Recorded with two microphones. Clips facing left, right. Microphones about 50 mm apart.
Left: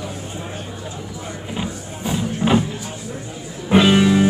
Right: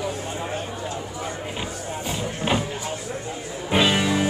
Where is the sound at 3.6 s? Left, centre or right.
Centre.